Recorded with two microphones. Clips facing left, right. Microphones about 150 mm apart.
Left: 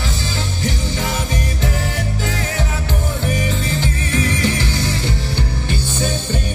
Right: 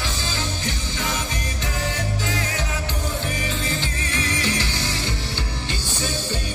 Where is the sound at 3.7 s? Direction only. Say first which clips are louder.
Left 7 dB; 45° left (ahead or behind).